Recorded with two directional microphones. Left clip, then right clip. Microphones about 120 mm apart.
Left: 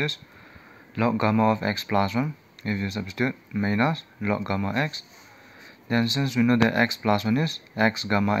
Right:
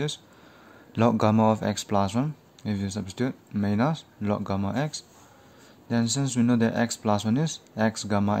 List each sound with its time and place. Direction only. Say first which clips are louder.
0.9 s a man's voice: right 2 dB; 50° right (ahead or behind)
1.2 s speech: even; 30° right (ahead or behind); by 8.4 s 15° right (ahead or behind)